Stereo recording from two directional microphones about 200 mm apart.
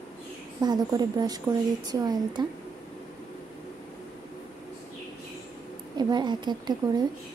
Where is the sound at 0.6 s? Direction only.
20° right (ahead or behind).